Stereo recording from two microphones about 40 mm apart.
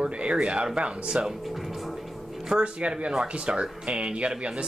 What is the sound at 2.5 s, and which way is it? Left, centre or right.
Speech, right.